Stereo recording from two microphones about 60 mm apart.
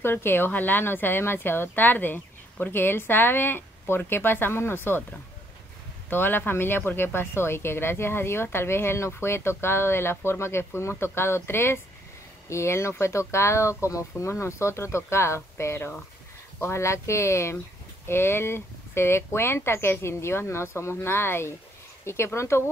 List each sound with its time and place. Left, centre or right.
0.0 s speech: left
6.0 s speech: left